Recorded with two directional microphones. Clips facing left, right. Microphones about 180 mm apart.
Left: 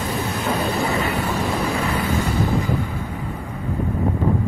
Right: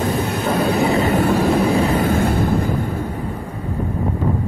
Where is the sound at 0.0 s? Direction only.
60° right (ahead or behind).